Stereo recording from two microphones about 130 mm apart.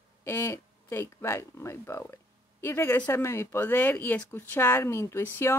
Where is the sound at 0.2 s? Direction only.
20° left (ahead or behind).